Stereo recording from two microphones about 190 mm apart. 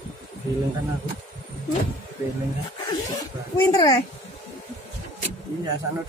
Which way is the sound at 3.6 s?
20° left (ahead or behind).